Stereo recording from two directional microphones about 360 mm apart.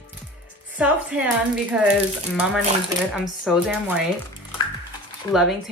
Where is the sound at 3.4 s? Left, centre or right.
Centre.